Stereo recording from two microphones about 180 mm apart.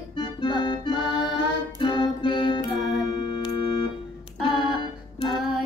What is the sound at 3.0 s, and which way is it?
Organ, 25° left (ahead or behind).